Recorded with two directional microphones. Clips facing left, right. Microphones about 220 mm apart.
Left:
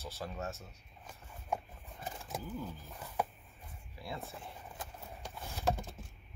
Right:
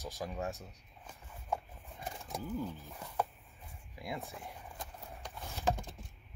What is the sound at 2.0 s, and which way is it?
Roaring cats, centre (ahead or behind).